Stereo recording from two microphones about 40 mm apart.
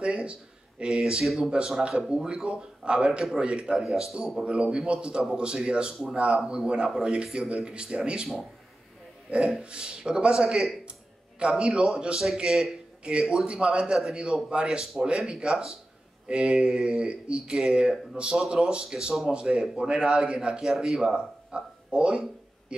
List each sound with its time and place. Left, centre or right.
0.0 s speech: right
3.8 s a man's voice: centre
4.5 s speech: right
9.6 s a man's voice: right